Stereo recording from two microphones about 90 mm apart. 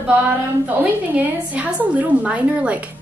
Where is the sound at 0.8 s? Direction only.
15° right (ahead or behind).